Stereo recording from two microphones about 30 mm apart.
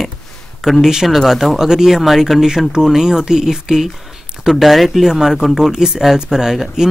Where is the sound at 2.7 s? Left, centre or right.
Centre.